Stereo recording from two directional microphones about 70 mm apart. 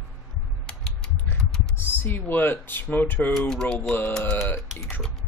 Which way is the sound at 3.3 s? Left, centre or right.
Centre.